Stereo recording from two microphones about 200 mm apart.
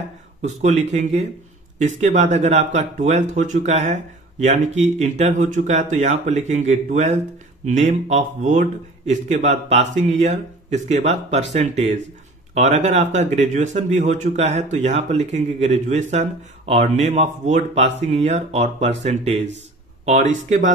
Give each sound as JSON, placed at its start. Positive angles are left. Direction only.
{"t": 0.4, "sound": "speech", "side_deg": -35}